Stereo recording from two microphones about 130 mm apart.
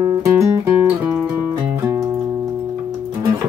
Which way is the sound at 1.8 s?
20° right (ahead or behind).